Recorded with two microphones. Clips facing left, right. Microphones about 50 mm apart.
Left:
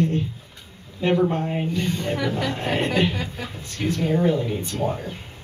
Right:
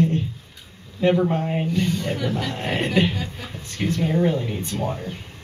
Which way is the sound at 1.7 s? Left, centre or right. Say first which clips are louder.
Right 2 dB; left.